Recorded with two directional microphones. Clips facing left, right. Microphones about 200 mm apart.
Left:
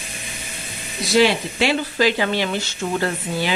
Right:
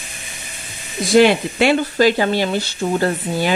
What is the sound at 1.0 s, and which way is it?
Speech, 50° right (ahead or behind).